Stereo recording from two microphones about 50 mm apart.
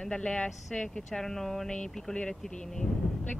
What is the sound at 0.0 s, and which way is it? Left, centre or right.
Speech, centre.